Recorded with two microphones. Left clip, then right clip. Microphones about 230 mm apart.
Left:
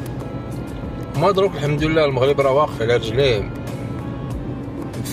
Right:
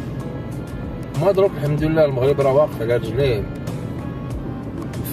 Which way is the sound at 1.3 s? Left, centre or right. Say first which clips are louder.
Even; left.